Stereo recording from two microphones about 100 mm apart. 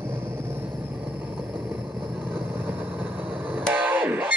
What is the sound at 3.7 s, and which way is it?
Music, 15° right (ahead or behind).